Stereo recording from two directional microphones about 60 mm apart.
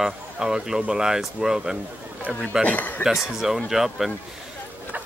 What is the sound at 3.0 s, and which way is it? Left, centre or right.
Speech, centre.